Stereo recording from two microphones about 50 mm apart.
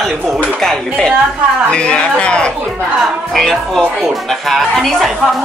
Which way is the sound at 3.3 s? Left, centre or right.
Centre.